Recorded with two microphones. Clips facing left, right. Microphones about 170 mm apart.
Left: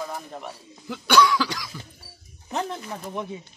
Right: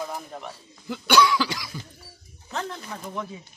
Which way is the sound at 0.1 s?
5° left (ahead or behind).